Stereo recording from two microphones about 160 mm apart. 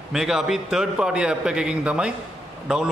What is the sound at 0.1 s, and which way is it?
A man's voice, 5° right (ahead or behind).